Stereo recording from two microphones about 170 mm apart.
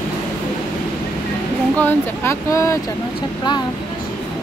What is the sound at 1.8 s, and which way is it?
Speech, 15° left (ahead or behind).